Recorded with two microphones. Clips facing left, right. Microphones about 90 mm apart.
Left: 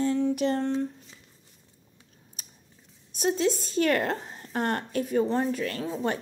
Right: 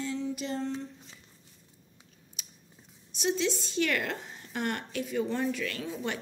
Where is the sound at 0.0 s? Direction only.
50° left (ahead or behind).